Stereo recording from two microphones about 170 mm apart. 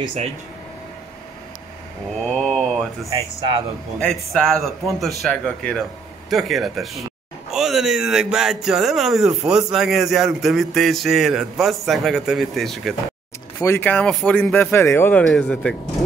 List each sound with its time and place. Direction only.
2.2 s speech: 5° left (ahead or behind)
13.6 s speech: 15° left (ahead or behind)